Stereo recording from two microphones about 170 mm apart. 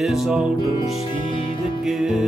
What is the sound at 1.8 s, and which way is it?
Music, centre (ahead or behind).